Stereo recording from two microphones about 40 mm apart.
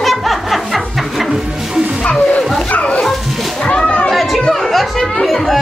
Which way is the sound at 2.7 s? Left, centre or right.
Left.